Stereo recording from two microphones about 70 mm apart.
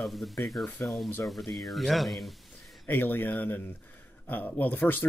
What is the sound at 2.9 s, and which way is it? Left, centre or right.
Speech, left.